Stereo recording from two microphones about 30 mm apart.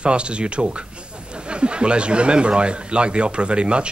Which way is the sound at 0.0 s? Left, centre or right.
Right.